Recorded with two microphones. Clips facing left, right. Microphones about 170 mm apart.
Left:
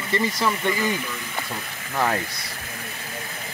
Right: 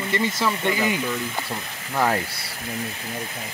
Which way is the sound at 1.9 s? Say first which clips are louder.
Right 2 dB; 10° right (ahead or behind).